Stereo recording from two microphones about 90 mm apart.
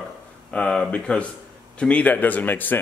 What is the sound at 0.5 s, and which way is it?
Speech, 10° left (ahead or behind).